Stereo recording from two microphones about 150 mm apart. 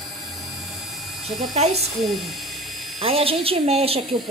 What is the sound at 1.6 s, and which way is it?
Speech, 45° right (ahead or behind).